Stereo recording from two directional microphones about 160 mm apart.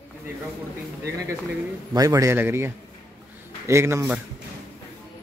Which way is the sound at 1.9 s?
25° right (ahead or behind).